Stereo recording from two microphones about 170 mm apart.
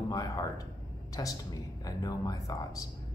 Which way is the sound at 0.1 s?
20° left (ahead or behind).